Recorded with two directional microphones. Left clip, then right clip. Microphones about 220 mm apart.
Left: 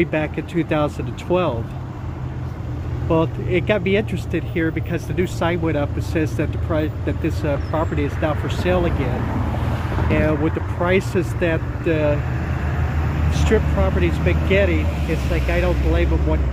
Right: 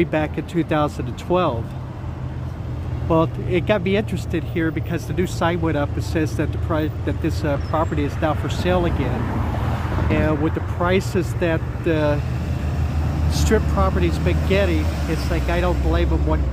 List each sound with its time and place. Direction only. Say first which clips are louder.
0.0 s speech: even; 15° right (ahead or behind)
3.1 s speech: even; 15° right (ahead or behind)
9.8 s vehicle: left 1 dB; 45° right (ahead or behind)
10.1 s speech: left 1 dB; 10° right (ahead or behind)
13.7 s speech: even; 15° right (ahead or behind)